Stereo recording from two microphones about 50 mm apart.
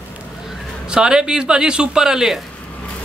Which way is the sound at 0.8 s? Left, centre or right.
Centre.